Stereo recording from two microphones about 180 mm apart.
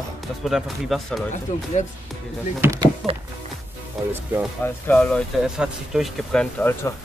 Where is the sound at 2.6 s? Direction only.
15° right (ahead or behind).